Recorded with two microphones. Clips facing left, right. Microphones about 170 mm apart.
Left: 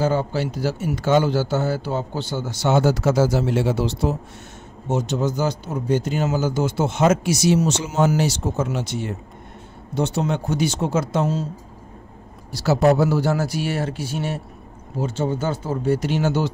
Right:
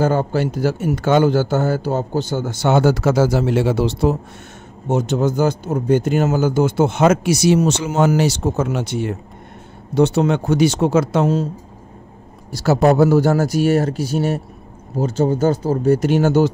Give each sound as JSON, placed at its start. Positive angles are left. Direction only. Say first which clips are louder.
{"t": 0.0, "sound": "a man's voice", "louder": "right 4 dB", "side_deg": -50}
{"t": 12.8, "sound": "a man's voice", "louder": "right 4 dB", "side_deg": -50}